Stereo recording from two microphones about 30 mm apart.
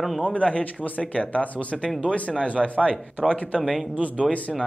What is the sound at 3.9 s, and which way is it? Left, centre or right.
Speech, right.